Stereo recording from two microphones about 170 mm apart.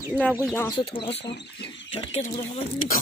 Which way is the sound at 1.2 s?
90° left.